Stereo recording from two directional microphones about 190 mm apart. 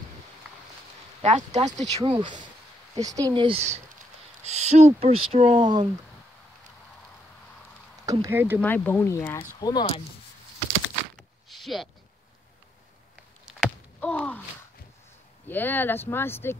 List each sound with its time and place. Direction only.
1.2 s speech: 35° right (ahead or behind)
2.0 s speech: 25° right (ahead or behind)
8.0 s speech: 15° right (ahead or behind)
8.5 s speech: 10° left (ahead or behind); by 10.0 s 25° left (ahead or behind)
11.4 s a sound: centre (ahead or behind)
13.5 s a sound: centre (ahead or behind)
14.1 s speech: 10° left (ahead or behind)
15.4 s speech: 10° left (ahead or behind)